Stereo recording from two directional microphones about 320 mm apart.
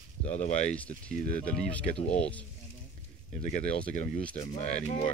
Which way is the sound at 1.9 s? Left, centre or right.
Left.